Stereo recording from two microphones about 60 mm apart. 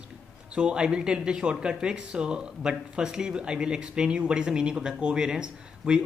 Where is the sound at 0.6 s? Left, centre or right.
Centre.